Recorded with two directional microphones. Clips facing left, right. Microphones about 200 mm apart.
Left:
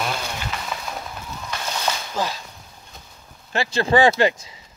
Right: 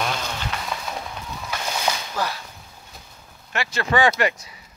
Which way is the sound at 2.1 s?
15° left (ahead or behind).